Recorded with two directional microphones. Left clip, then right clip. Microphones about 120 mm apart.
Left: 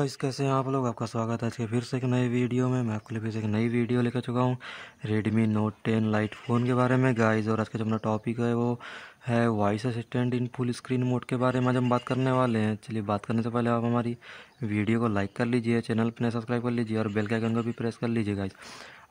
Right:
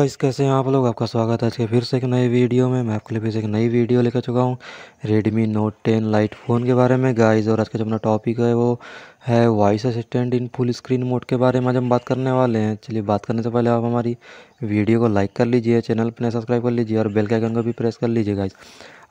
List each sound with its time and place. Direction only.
0.0 s speech: 45° right (ahead or behind)